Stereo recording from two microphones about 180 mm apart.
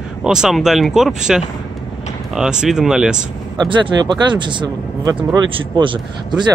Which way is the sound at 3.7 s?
25° right (ahead or behind).